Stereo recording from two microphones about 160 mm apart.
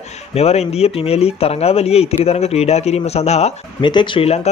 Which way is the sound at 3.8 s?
30° left (ahead or behind).